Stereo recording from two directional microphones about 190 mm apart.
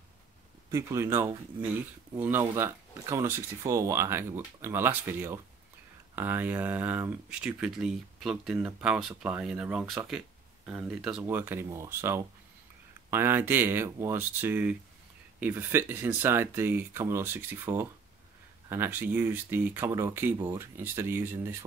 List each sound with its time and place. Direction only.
0.7 s speech: 15° right (ahead or behind)